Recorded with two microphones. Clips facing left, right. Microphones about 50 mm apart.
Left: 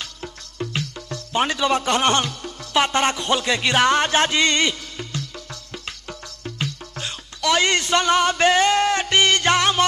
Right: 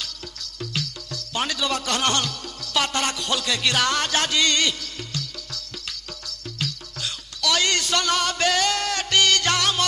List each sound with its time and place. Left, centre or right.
0.0 s music: left